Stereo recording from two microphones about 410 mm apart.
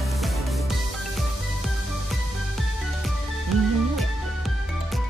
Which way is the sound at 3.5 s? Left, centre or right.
Right.